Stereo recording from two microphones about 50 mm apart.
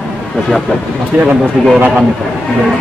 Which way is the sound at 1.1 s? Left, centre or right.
Centre.